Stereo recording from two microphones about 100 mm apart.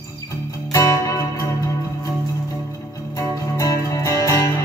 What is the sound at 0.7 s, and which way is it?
Music, 35° left (ahead or behind).